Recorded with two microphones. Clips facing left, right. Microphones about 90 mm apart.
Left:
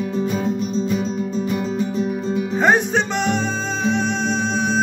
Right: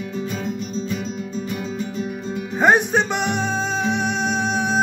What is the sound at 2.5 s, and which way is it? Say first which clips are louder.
Music: right 1 dB; 15° right (ahead or behind).